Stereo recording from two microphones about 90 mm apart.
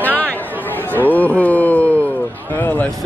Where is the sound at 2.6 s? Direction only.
20° left (ahead or behind).